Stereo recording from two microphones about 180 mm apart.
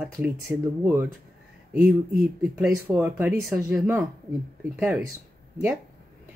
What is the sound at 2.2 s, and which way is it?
A woman's voice, centre (ahead or behind).